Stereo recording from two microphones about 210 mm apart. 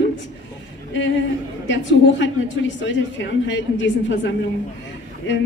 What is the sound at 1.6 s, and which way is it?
A woman's voice, 60° left (ahead or behind).